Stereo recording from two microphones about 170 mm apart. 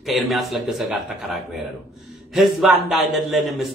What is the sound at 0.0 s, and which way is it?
A man's voice, centre (ahead or behind).